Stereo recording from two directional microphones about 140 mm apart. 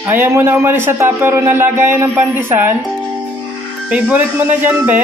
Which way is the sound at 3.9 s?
15° right (ahead or behind).